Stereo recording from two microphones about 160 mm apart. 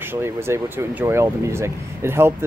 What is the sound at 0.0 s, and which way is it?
Speech, 15° right (ahead or behind).